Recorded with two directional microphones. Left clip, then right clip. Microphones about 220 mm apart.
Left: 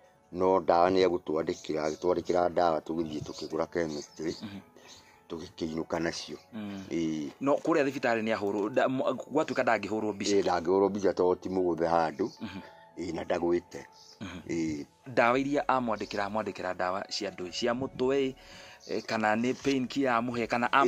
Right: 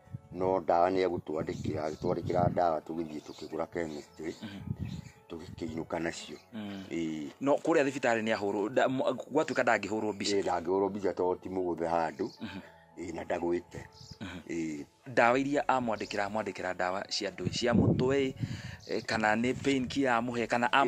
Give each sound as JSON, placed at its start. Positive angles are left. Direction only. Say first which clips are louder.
{"t": 0.4, "sound": "speech", "louder": "left 3 dB", "side_deg": 20}
{"t": 5.3, "sound": "speech", "louder": "left 4 dB", "side_deg": 15}
{"t": 6.5, "sound": "speech", "louder": "left 1 dB", "side_deg": -10}
{"t": 6.9, "sound": "speech", "louder": "left 4 dB", "side_deg": 15}
{"t": 7.4, "sound": "speech", "louder": "even", "side_deg": -15}
{"t": 10.3, "sound": "speech", "louder": "left 5 dB", "side_deg": 15}
{"t": 12.4, "sound": "speech", "louder": "left 1 dB", "side_deg": -10}
{"t": 12.9, "sound": "speech", "louder": "left 3 dB", "side_deg": 15}
{"t": 15.1, "sound": "speech", "louder": "even", "side_deg": -10}